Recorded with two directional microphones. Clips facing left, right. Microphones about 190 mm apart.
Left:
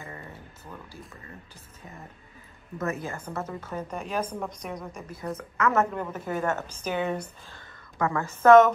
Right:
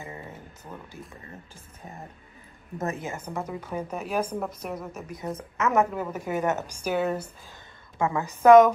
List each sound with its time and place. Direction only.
2.8 s speech: 20° right (ahead or behind); by 5.1 s 5° right (ahead or behind)
5.3 s a woman's voice: 20° right (ahead or behind)
5.9 s speech: 5° right (ahead or behind)
7.5 s a woman's voice: 20° right (ahead or behind)